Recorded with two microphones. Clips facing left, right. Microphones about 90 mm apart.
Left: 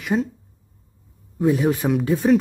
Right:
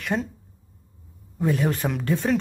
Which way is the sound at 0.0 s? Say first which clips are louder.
Left 4 dB; 5° left (ahead or behind).